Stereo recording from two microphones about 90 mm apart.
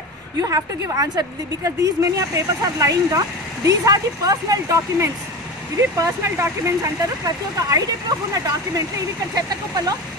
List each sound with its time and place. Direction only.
0.4 s a woman's voice: 40° right (ahead or behind)